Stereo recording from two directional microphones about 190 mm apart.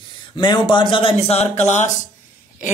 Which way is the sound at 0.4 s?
25° left (ahead or behind).